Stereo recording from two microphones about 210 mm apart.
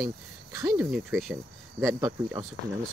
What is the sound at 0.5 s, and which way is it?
Speech, 15° right (ahead or behind).